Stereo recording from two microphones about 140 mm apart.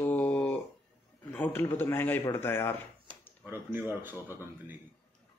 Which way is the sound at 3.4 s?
15° right (ahead or behind).